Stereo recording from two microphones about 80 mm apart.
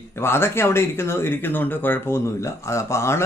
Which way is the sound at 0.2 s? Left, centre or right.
Left.